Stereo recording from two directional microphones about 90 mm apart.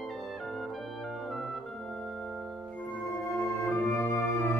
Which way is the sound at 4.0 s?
30° left (ahead or behind).